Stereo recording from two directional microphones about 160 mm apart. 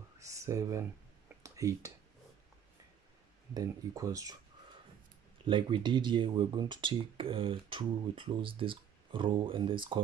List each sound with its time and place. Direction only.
0.2 s speech: 20° right (ahead or behind)
1.4 s a sound: 20° right (ahead or behind)
3.5 s speech: 20° right (ahead or behind)
5.5 s speech: 30° right (ahead or behind)